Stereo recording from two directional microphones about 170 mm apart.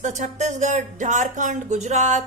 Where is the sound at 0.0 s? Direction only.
45° right (ahead or behind).